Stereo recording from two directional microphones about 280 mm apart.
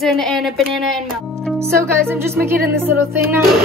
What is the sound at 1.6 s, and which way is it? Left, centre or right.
Music, centre.